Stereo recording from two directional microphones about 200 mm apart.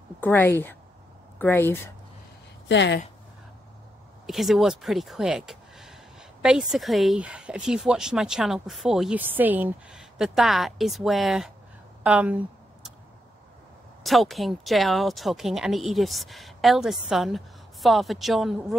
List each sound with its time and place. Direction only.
0.2 s a woman's voice: 10° left (ahead or behind)
2.7 s speech: 60° left (ahead or behind)
4.3 s speech: centre (ahead or behind)
12.0 s a sound: 5° right (ahead or behind)
14.0 s speech: centre (ahead or behind)